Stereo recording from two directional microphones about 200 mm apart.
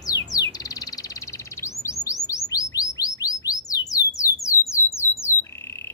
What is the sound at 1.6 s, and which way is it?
Chirp, 15° left (ahead or behind).